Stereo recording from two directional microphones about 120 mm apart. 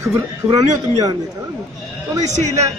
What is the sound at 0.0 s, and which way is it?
Speech, 30° right (ahead or behind).